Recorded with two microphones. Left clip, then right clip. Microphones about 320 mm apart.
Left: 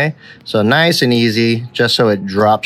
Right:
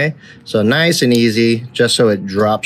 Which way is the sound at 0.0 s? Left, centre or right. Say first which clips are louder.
Left 1 dB; left.